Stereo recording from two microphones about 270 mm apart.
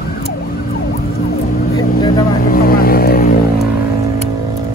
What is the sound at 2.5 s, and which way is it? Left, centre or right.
Vehicle, left.